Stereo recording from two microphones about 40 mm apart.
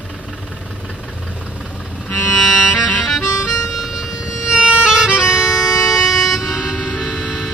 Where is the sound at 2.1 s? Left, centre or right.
Left.